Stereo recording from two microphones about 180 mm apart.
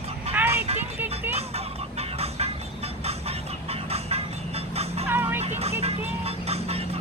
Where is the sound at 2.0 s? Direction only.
35° right (ahead or behind).